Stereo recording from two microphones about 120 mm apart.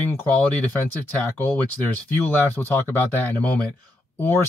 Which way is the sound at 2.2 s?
15° left (ahead or behind).